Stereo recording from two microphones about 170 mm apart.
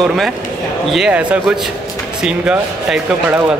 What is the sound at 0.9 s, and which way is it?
Speech, 5° right (ahead or behind).